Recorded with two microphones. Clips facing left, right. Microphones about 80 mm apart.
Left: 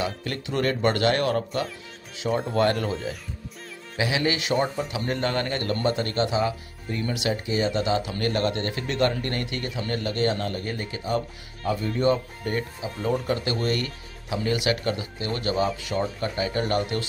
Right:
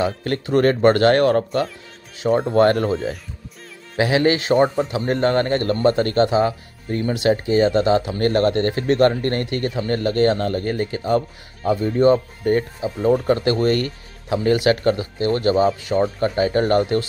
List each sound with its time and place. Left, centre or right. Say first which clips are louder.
0.0 s a man's voice: right 7 dB; right
11.7 s speech: right 8 dB; right
15.5 s speech: right 7 dB; right